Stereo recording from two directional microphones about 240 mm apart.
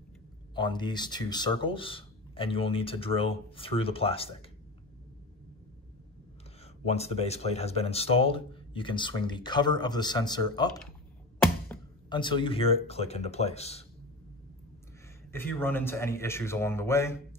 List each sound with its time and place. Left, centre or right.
0.6 s speech: centre
6.8 s speech: left
15.3 s a man's voice: centre